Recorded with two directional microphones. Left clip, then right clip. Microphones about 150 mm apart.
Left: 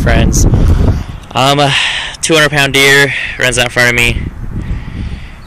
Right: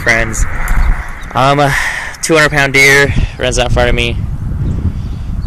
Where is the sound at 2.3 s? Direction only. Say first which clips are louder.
Even; 15° left (ahead or behind).